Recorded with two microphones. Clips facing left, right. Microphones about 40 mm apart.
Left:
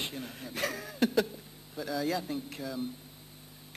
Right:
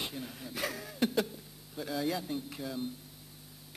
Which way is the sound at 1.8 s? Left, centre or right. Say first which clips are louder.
Left 2 dB; centre.